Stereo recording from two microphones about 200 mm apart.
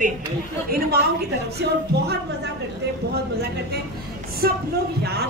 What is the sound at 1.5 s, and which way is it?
Speech, 55° right (ahead or behind).